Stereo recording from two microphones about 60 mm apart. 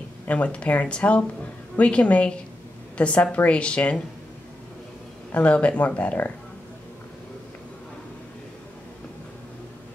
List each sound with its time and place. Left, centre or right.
0.3 s a woman's voice: left
5.3 s speech: left